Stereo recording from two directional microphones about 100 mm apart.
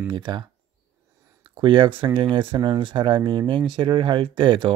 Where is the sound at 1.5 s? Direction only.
55° right (ahead or behind).